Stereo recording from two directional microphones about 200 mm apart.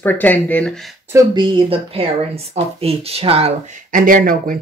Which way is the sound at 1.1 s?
20° right (ahead or behind).